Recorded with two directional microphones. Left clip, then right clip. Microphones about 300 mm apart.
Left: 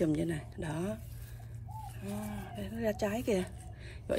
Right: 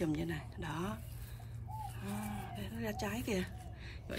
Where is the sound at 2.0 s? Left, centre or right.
Centre.